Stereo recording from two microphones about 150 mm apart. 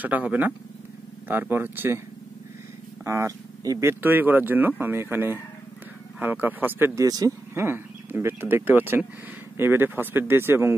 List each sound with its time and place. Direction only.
0.0 s speech: 10° right (ahead or behind)
3.1 s speech: 20° right (ahead or behind)
7.1 s speech: 25° right (ahead or behind)